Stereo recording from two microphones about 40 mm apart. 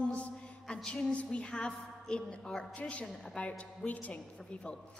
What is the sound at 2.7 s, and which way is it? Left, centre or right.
Speech, left.